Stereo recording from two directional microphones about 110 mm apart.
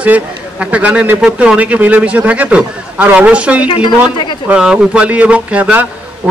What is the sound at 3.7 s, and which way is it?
Speech, 45° left (ahead or behind).